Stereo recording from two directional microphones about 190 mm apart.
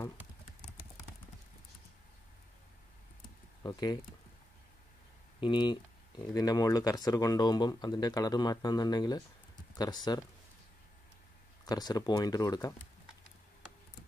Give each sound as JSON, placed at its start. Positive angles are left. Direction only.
{"t": 3.6, "sound": "speech", "side_deg": 20}
{"t": 5.4, "sound": "speech", "side_deg": 25}
{"t": 11.6, "sound": "speech", "side_deg": 20}